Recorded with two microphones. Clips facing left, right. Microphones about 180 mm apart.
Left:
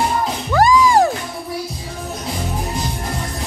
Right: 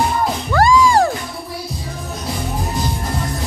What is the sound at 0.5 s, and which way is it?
Music, 15° left (ahead or behind).